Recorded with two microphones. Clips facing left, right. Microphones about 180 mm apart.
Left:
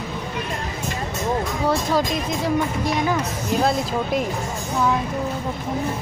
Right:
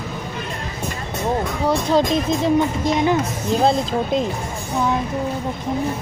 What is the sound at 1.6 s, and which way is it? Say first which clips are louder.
Speech: right 4 dB; 25° right (ahead or behind).